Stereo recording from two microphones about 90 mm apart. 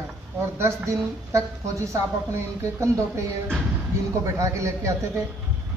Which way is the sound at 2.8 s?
35° right (ahead or behind).